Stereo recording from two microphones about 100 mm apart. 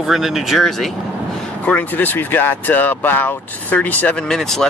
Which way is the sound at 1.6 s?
15° left (ahead or behind).